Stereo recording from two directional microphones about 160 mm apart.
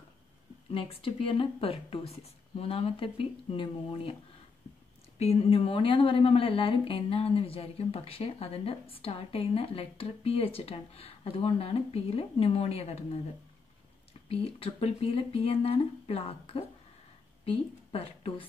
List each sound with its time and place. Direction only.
0.7 s a woman's voice: 35° left (ahead or behind)
5.2 s a woman's voice: 40° left (ahead or behind)
14.3 s a woman's voice: 35° left (ahead or behind)